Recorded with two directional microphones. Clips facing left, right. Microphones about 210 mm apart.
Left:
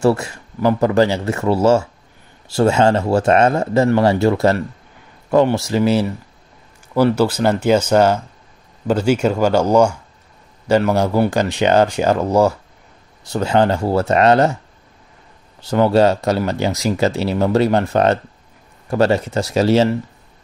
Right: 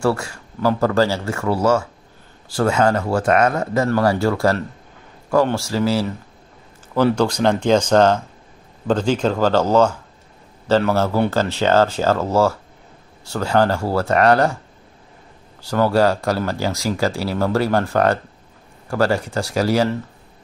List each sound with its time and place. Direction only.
0.0 s speech: 20° left (ahead or behind)
7.1 s speech: 5° left (ahead or behind); by 14.6 s 20° left (ahead or behind)
15.6 s speech: 20° left (ahead or behind)